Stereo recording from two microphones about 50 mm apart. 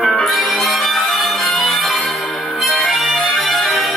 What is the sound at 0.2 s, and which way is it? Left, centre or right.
Music, centre.